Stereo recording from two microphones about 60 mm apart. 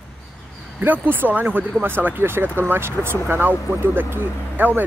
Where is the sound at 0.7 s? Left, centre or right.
Right.